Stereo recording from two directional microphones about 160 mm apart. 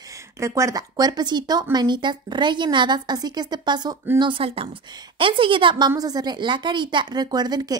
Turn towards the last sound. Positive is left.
turn(degrees=-25)  # may be behind; listen again after turning